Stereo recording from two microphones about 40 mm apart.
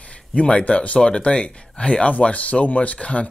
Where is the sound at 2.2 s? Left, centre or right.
Left.